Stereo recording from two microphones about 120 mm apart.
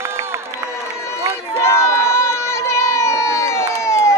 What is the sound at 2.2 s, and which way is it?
Crowd, 25° left (ahead or behind).